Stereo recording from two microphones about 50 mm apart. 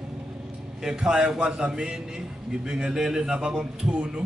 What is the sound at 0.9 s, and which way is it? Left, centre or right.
Speech, centre.